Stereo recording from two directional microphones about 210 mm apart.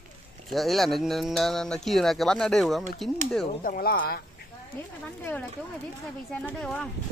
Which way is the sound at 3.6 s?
45° left (ahead or behind).